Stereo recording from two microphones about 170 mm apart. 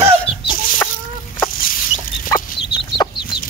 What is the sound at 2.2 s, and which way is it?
Chicken, 25° left (ahead or behind).